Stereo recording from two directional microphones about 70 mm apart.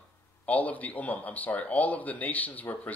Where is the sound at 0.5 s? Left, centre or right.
Left.